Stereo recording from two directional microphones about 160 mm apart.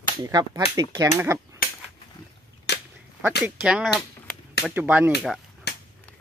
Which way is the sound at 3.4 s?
5° right (ahead or behind).